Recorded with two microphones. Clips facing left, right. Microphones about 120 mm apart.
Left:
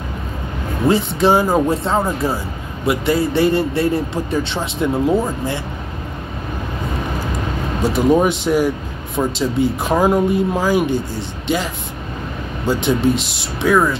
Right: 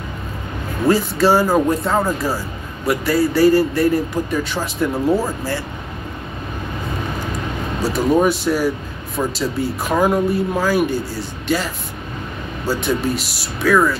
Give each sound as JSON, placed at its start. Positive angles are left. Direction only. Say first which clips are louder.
{"t": 0.8, "sound": "speech", "louder": "even", "side_deg": 20}
{"t": 7.8, "sound": "speech", "louder": "left 1 dB", "side_deg": 20}